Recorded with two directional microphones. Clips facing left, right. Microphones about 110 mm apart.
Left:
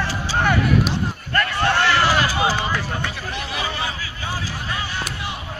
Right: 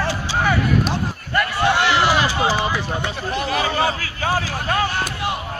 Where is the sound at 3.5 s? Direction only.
50° right (ahead or behind).